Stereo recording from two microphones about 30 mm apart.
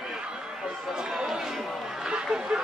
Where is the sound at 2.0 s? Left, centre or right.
Right.